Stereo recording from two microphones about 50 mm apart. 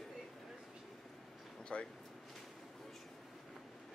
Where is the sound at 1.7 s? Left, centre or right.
Left.